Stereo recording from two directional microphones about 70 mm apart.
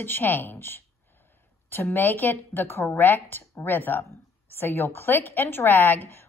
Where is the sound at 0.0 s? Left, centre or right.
Left.